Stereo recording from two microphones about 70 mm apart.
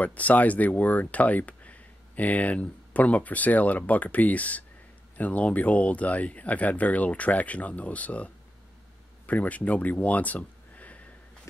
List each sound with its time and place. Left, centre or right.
0.0 s speech: left